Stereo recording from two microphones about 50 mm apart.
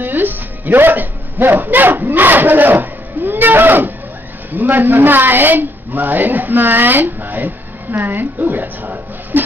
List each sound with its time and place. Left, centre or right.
0.0 s music: right
4.5 s speech: right
8.5 s a sound: right